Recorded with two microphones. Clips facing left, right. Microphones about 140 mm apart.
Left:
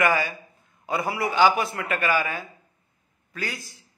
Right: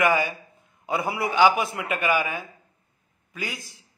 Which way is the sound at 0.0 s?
15° right (ahead or behind).